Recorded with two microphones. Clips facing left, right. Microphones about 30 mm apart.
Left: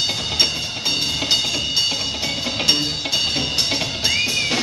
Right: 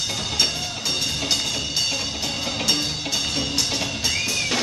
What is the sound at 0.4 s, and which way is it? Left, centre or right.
Music, left.